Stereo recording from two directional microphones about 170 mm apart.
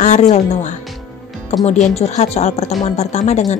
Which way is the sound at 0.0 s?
45° left (ahead or behind).